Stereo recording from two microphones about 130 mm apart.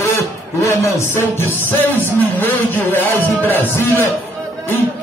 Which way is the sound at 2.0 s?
15° left (ahead or behind).